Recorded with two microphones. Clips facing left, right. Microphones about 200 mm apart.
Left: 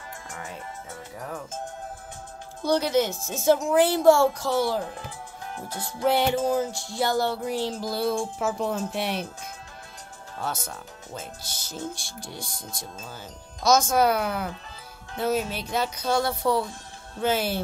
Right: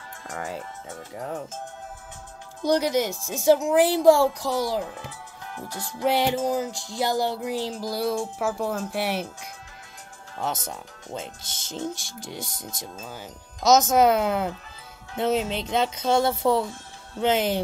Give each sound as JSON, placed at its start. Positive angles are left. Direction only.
{"t": 1.1, "sound": "speech", "side_deg": -25}
{"t": 2.6, "sound": "music", "side_deg": -15}
{"t": 5.5, "sound": "music", "side_deg": 20}
{"t": 5.9, "sound": "music", "side_deg": -15}
{"t": 10.4, "sound": "speech", "side_deg": -20}